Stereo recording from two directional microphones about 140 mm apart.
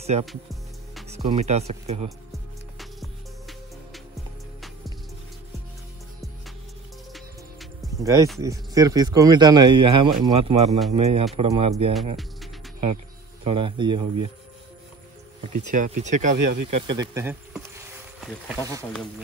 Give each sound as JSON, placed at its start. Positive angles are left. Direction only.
{"t": 0.2, "sound": "music", "side_deg": 0}
{"t": 1.1, "sound": "speech", "side_deg": -50}
{"t": 2.0, "sound": "music", "side_deg": 0}
{"t": 8.0, "sound": "speech", "side_deg": -20}
{"t": 13.4, "sound": "speech", "side_deg": -40}
{"t": 15.5, "sound": "speech", "side_deg": -65}
{"t": 16.8, "sound": "speech", "side_deg": -30}
{"t": 17.1, "sound": "speech", "side_deg": -15}